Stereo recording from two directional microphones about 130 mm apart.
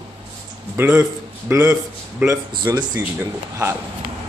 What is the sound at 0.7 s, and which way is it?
A man's voice, 15° right (ahead or behind).